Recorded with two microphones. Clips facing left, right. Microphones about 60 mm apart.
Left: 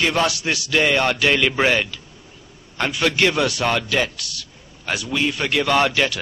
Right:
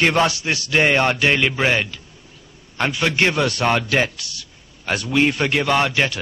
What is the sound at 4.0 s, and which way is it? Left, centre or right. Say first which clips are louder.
Speech: right 1 dB; right.